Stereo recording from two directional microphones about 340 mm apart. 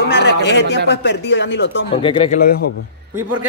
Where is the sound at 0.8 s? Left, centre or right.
Left.